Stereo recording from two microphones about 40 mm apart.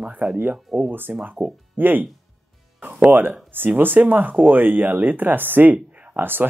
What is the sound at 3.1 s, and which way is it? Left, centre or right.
Speech, right.